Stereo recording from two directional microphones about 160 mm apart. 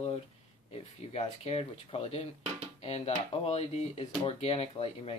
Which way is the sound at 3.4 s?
40° left (ahead or behind).